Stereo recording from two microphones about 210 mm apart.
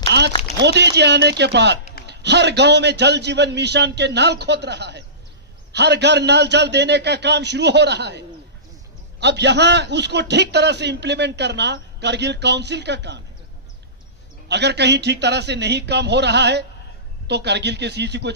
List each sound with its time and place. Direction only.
0.3 s speech: 30° left (ahead or behind)
0.6 s a man's voice: 55° right (ahead or behind)
14.5 s a man's voice: 55° right (ahead or behind)